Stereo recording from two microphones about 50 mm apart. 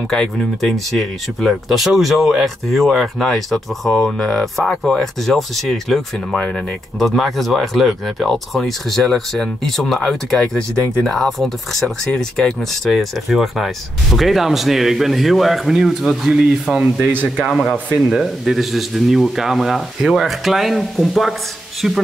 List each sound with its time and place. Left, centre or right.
0.6 s speech: centre
6.3 s speech: centre
7.0 s speech: centre
12.8 s speech: centre
17.0 s speech: right
17.5 s speech: centre